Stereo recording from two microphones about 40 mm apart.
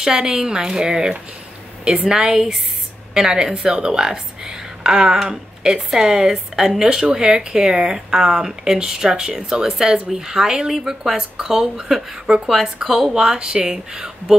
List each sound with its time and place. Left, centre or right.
0.0 s speech: centre